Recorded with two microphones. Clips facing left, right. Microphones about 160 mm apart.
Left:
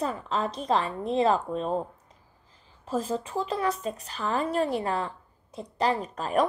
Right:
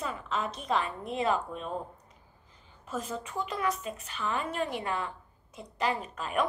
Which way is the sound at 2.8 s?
30° left (ahead or behind).